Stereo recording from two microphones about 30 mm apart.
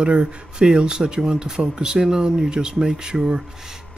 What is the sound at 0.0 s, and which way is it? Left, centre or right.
Speech, right.